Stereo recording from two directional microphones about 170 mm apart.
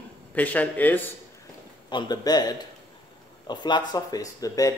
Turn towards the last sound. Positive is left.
turn(degrees=20)  # may be behind; listen again after turning